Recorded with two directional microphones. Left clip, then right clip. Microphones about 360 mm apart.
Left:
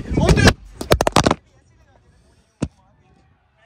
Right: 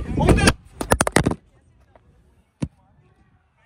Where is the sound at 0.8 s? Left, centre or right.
Right.